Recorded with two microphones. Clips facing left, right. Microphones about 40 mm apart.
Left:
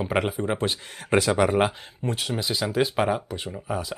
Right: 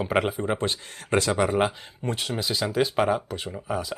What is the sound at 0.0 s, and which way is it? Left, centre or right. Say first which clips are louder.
Speech: right 1 dB; centre.